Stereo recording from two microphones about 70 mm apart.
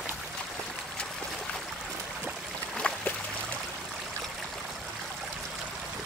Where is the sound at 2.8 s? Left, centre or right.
Centre.